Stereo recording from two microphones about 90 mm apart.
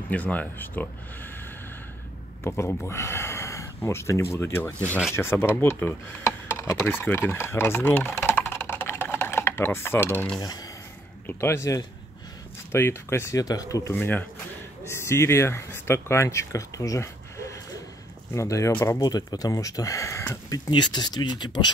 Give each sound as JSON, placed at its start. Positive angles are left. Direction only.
{"t": 0.1, "sound": "speech", "side_deg": 15}
{"t": 2.4, "sound": "speech", "side_deg": 25}
{"t": 10.4, "sound": "speech", "side_deg": 45}
{"t": 11.2, "sound": "speech", "side_deg": 30}
{"t": 13.9, "sound": "speech", "side_deg": 20}
{"t": 18.7, "sound": "speech", "side_deg": 25}
{"t": 18.9, "sound": "speech", "side_deg": 45}
{"t": 20.4, "sound": "speech", "side_deg": 45}